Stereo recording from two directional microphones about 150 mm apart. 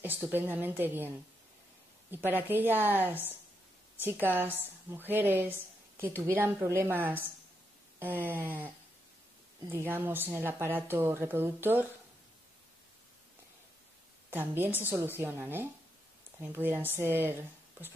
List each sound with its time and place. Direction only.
0.0 s speech: 15° right (ahead or behind)
14.3 s speech: 15° right (ahead or behind)